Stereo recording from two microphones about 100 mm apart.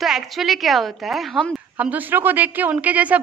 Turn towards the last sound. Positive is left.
turn(degrees=-15)  # may be behind; listen again after turning